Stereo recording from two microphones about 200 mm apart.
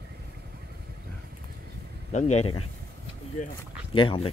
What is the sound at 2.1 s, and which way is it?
Speech, 35° left (ahead or behind).